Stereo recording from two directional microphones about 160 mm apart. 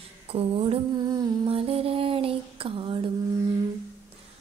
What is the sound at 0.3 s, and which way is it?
Music, 35° right (ahead or behind).